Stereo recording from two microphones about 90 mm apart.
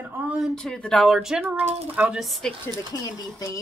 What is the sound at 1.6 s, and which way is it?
Speech, 15° right (ahead or behind).